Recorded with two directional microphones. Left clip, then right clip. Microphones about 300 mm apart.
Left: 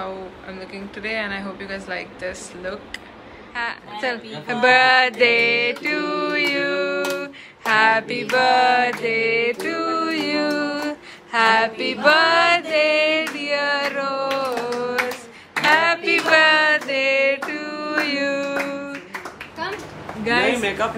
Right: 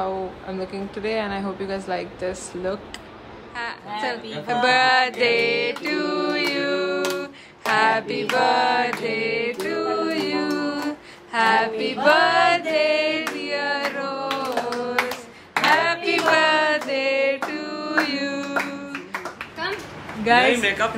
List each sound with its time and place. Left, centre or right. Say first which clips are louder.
0.0 s speech: right 4 dB; centre
3.5 s speech: left 2 dB; centre
15.7 s a sound: left 4 dB; centre
20.2 s a man's voice: right 3 dB; centre
20.5 s speech: right 1 dB; centre